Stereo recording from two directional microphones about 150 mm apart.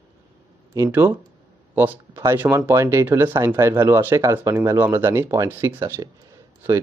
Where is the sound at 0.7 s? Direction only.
15° right (ahead or behind).